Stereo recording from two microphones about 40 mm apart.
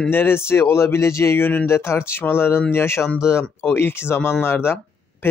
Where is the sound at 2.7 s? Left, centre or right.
Left.